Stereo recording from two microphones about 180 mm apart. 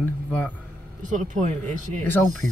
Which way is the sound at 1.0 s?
45° right (ahead or behind).